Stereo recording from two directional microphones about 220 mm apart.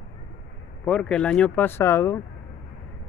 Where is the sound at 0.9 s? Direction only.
5° left (ahead or behind).